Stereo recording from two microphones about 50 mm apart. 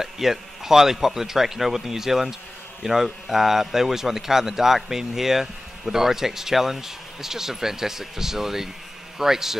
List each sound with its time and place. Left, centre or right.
0.0 s a man's voice: centre